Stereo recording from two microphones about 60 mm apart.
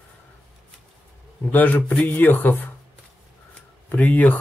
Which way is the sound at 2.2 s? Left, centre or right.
Left.